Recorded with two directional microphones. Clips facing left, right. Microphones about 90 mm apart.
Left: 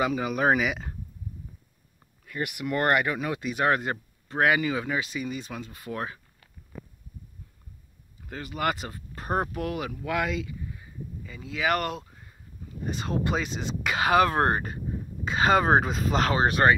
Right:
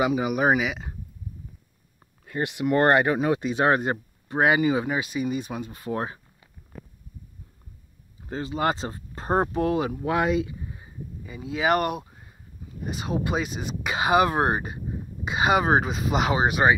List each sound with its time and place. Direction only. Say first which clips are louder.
0.0 s speech: right 2 dB; 15° right (ahead or behind)
0.6 s speech: even; centre (ahead or behind)
2.2 s speech: right 5 dB; 25° right (ahead or behind)
8.2 s speech: right 4 dB; 25° right (ahead or behind)